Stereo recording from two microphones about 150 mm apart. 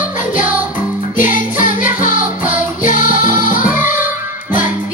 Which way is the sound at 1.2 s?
65° left (ahead or behind).